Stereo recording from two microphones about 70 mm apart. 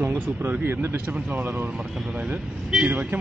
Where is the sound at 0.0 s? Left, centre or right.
Right.